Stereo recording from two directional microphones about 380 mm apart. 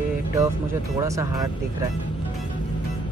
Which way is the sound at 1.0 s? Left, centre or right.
Centre.